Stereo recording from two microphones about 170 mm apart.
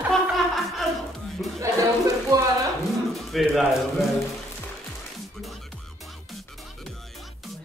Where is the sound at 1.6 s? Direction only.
20° right (ahead or behind).